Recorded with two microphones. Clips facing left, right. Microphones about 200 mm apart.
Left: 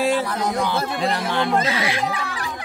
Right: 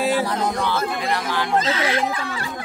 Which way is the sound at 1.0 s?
25° left (ahead or behind).